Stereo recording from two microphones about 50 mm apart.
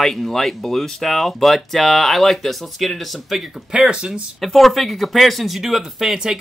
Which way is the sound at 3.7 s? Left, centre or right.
Centre.